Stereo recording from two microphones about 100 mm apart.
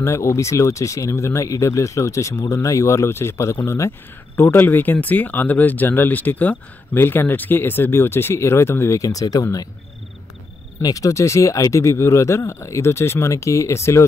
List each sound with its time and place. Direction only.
0.0 s speech: 30° left (ahead or behind)
10.8 s speech: 35° left (ahead or behind)